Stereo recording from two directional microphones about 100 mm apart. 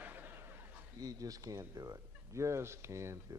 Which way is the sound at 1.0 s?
35° right (ahead or behind).